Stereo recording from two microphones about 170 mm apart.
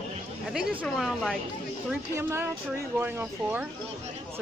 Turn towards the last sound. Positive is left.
turn(degrees=-10)  # may be behind; listen again after turning